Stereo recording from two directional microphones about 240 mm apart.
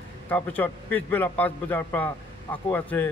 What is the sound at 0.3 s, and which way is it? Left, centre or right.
A man's voice, centre.